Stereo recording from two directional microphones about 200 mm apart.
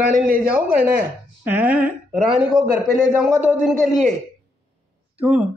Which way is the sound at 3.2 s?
10° right (ahead or behind).